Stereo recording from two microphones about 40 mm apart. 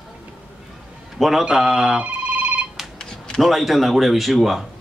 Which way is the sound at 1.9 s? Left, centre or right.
Right.